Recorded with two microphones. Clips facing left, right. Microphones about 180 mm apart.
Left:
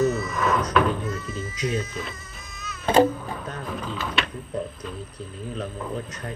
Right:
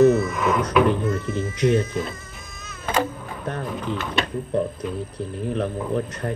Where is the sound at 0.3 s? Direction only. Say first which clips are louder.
Right 2 dB; 10° right (ahead or behind).